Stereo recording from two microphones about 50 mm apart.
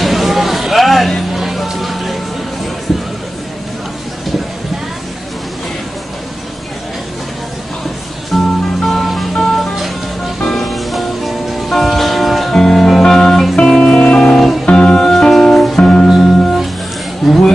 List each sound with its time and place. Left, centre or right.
0.0 s music: centre
2.9 s a sound: centre
8.3 s music: centre
13.7 s music: centre
15.7 s music: centre
16.1 s music: centre
17.2 s a sound: centre